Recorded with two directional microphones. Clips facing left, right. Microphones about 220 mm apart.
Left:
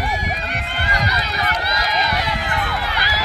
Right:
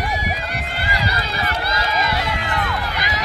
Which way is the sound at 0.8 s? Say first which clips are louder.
Left 1 dB; 30° right (ahead or behind).